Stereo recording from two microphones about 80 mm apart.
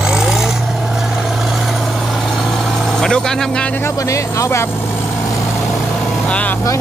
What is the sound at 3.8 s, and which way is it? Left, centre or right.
Speech, left.